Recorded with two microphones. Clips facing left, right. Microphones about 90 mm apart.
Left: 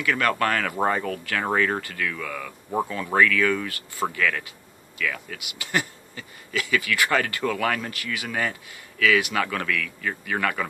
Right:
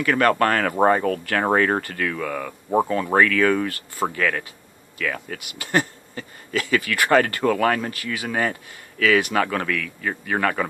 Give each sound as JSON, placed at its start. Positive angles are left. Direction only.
{"t": 0.0, "sound": "speech", "side_deg": -40}